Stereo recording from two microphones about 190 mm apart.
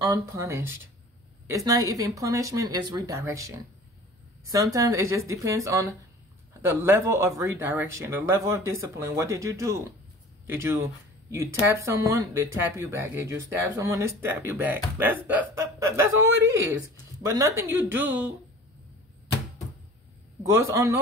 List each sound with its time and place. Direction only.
0.0 s speech: 15° right (ahead or behind)
4.7 s speech: 15° right (ahead or behind)
20.4 s speech: 15° right (ahead or behind)